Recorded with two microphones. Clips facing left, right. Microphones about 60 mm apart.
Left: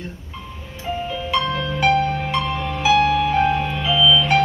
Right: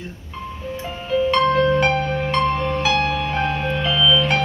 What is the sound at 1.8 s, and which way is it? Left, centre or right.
Music, centre.